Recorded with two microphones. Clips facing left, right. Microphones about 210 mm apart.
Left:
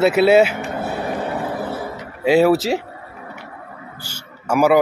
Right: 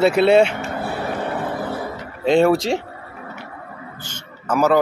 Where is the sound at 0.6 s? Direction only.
20° left (ahead or behind).